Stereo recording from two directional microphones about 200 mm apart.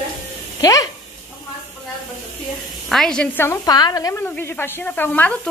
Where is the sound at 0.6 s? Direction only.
15° left (ahead or behind).